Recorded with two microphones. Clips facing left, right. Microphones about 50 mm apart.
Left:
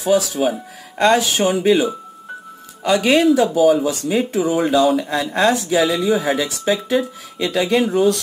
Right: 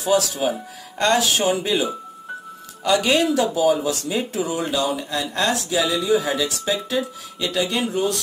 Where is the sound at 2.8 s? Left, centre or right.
Centre.